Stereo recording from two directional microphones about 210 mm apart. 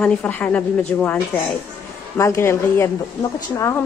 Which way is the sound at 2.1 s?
10° left (ahead or behind).